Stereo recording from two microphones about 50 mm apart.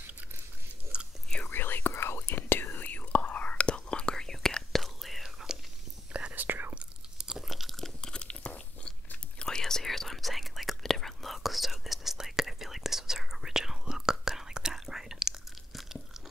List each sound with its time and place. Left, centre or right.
0.9 s chewing: right
1.5 s whispering: left; by 4.8 s centre
4.8 s whispering: centre
6.3 s whispering: right
6.7 s chewing: centre
8.1 s crunch: centre
9.4 s whispering: centre